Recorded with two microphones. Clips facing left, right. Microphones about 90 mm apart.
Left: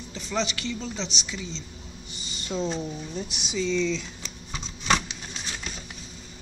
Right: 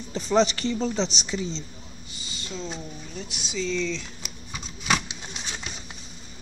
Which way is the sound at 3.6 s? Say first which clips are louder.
Left 2 dB; centre (ahead or behind).